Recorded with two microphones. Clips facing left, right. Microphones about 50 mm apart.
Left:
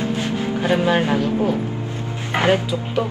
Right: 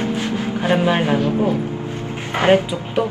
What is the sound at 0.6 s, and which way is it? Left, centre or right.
Speech, right.